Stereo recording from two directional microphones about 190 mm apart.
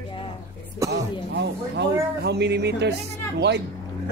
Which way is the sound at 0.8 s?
65° right (ahead or behind).